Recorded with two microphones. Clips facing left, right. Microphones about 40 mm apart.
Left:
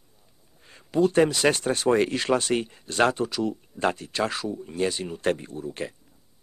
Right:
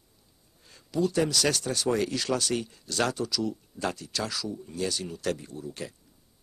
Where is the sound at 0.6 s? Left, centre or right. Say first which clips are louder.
Left 5 dB; left.